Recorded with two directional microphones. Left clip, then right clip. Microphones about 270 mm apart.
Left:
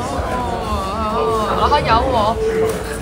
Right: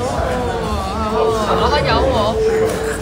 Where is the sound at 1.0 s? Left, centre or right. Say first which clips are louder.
Right 2 dB; centre.